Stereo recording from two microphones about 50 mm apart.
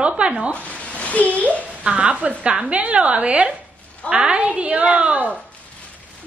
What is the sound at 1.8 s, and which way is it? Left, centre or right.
A woman's voice, right.